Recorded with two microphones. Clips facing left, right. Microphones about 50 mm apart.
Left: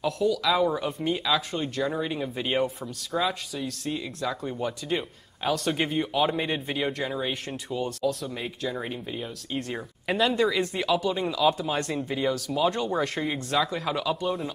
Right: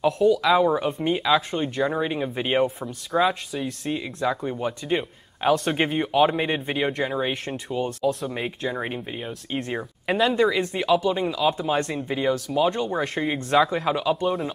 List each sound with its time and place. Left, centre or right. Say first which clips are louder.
0.3 s speech: right 4 dB; right
10.1 s speech: right 3 dB; centre